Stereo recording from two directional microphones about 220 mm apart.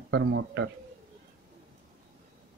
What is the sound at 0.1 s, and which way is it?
Speech, 55° right (ahead or behind).